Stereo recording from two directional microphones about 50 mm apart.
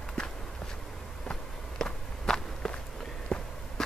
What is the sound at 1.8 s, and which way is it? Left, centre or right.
Walk, centre.